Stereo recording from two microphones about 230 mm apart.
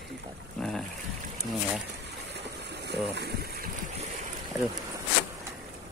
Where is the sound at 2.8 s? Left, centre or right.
Right.